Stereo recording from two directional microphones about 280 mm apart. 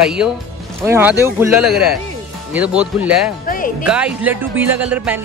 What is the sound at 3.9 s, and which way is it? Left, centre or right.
Speech, centre.